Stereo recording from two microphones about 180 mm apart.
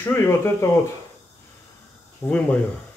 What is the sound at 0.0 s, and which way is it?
Speech, 10° left (ahead or behind).